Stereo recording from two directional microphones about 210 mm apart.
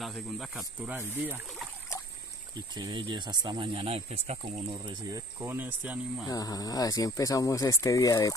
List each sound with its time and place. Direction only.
0.0 s speech: centre (ahead or behind)
2.7 s speech: 20° right (ahead or behind)
5.1 s speech: 10° right (ahead or behind)
6.2 s speech: 15° left (ahead or behind)